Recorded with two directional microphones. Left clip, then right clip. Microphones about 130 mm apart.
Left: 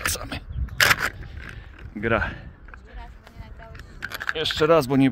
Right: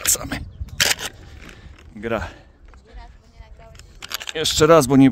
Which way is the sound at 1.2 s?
65° right (ahead or behind).